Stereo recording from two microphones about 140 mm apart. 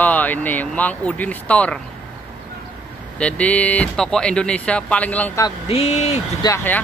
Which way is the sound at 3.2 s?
10° left (ahead or behind).